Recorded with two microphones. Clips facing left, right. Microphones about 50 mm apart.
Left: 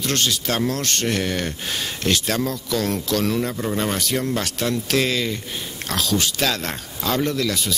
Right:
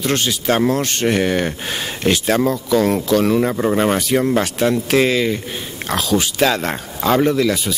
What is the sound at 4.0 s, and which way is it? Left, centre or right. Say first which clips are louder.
Speech: right 7 dB; centre.